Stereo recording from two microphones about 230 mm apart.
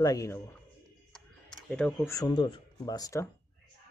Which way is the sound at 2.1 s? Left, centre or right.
Centre.